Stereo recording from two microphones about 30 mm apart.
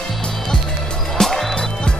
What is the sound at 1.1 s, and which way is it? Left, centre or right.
Music, centre.